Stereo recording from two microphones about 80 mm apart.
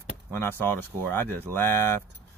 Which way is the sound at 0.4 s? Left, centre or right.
Left.